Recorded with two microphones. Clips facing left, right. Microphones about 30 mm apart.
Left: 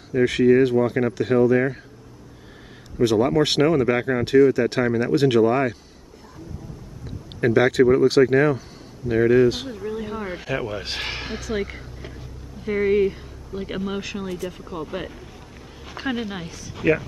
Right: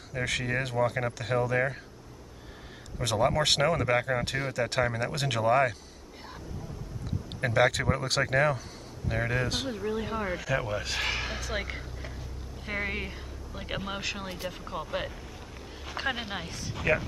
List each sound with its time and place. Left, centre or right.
0.1 s speech: centre
3.0 s speech: centre
7.1 s speech: centre
9.7 s speech: centre
10.8 s speech: left
11.4 s speech: centre
16.7 s speech: centre